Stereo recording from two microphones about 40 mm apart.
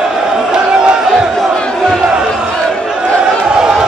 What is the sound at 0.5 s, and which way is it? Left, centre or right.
Crowd, right.